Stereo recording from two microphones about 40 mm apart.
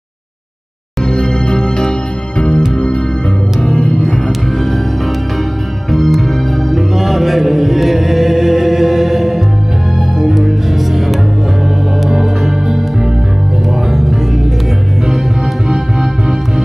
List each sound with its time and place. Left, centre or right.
1.1 s music: centre
3.6 s music: centre
5.9 s music: centre
12.0 s organ: centre
15.7 s music: centre